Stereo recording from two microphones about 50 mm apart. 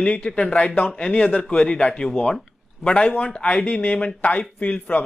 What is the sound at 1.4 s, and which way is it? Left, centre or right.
A man's voice, left.